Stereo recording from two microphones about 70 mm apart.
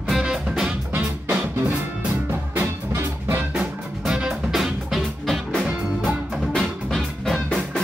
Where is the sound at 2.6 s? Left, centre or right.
Right.